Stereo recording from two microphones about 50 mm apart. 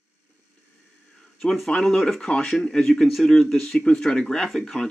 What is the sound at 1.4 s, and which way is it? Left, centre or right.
Speech, centre.